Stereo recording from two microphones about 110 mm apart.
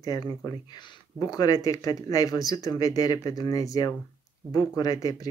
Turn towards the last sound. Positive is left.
turn(degrees=35)  # may be behind; listen again after turning